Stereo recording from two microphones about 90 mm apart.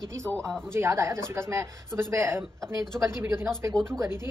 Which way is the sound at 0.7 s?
30° right (ahead or behind).